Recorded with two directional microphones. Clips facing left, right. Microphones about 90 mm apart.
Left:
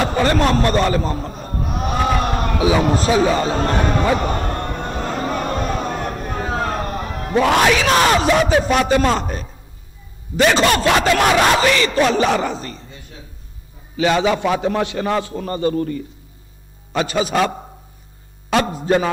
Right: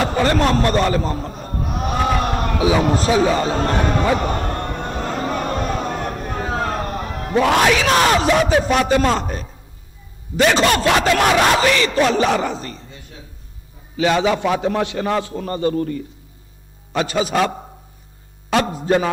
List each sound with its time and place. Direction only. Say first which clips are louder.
0.0 s speech: even; 20° left (ahead or behind)
1.8 s a sound: even; 15° left (ahead or behind)
10.3 s a man's voice: left 1 dB; 15° left (ahead or behind)
13.9 s a man's voice: even; 15° left (ahead or behind)
16.9 s a man's voice: even; 15° left (ahead or behind)